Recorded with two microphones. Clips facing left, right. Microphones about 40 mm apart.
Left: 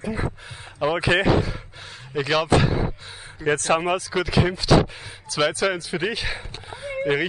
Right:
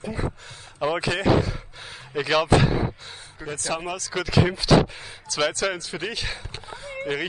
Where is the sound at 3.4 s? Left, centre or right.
Left.